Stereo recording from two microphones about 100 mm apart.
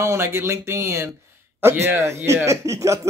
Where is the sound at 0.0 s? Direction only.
25° right (ahead or behind).